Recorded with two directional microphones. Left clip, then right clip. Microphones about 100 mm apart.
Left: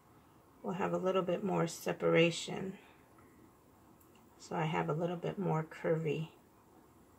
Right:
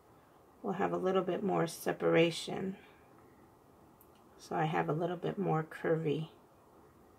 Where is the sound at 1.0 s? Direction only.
90° right.